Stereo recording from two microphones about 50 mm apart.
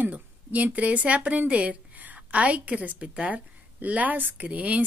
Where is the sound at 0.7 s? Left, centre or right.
Right.